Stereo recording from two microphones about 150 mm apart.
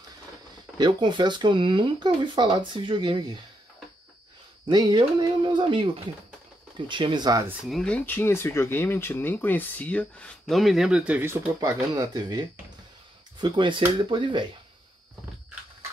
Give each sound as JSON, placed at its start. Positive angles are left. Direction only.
{"t": 0.7, "sound": "speech", "side_deg": -30}
{"t": 4.6, "sound": "speech", "side_deg": -30}
{"t": 6.9, "sound": "speech", "side_deg": -30}
{"t": 7.6, "sound": "speech", "side_deg": 5}